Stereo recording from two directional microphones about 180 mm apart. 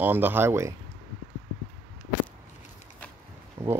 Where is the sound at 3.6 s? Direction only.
15° right (ahead or behind).